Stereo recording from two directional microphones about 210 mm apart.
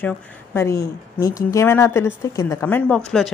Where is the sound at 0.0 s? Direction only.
10° left (ahead or behind).